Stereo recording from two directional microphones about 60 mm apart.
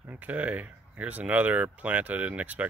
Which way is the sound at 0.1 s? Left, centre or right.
Right.